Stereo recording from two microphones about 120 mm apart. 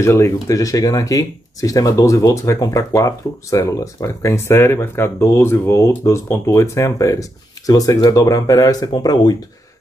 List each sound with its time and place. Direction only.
0.0 s speech: 25° left (ahead or behind)